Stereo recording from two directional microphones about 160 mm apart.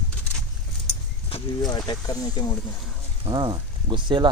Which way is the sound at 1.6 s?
25° left (ahead or behind).